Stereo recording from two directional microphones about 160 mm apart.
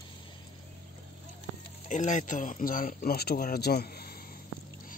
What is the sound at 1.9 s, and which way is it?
Speech, 50° left (ahead or behind).